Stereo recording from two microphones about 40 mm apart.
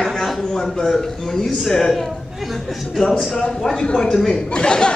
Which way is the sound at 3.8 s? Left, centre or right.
Centre.